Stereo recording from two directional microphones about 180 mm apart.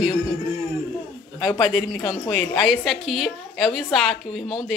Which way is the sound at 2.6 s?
Centre (ahead or behind).